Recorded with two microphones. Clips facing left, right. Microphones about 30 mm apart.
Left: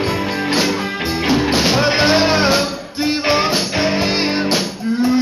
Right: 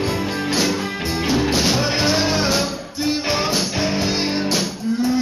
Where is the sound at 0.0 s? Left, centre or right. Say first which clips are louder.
Left 3 dB; centre.